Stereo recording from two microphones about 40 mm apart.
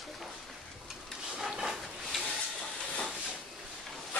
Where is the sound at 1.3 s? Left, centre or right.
Centre.